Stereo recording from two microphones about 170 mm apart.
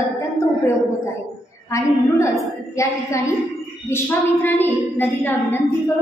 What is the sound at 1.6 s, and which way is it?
Speech, 20° left (ahead or behind).